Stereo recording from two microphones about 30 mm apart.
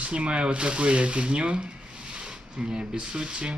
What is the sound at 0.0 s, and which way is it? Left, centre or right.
Speech, right.